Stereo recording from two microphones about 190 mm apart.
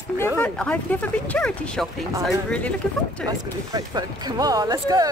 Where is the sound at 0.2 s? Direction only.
10° left (ahead or behind).